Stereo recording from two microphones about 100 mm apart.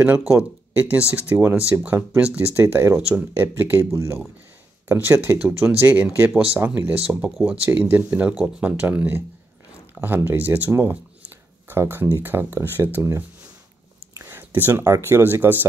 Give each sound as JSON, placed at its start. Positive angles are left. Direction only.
{"t": 0.3, "sound": "speech", "side_deg": -10}
{"t": 7.2, "sound": "speech", "side_deg": 0}
{"t": 7.6, "sound": "speech", "side_deg": -15}
{"t": 14.1, "sound": "a sound", "side_deg": -25}
{"t": 14.9, "sound": "speech", "side_deg": -25}